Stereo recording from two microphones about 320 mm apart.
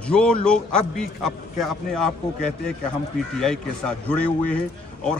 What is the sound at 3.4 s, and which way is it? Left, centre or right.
A man's voice, centre.